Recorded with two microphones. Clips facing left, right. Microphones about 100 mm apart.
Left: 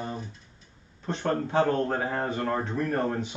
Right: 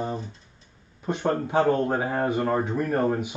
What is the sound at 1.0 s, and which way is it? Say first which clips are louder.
Speech: right 3 dB; 10° right (ahead or behind).